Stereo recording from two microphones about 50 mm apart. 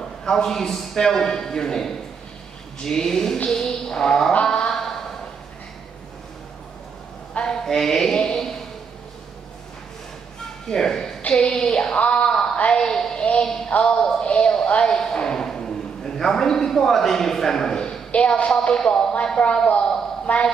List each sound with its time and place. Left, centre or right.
0.0 s a man's voice: centre
7.6 s speech: centre
10.7 s speech: centre
11.2 s a sound: centre
12.5 s a woman's voice: left
13.2 s a sound: left
13.8 s a man's voice: centre
18.1 s a sound: left
18.8 s a man's voice: centre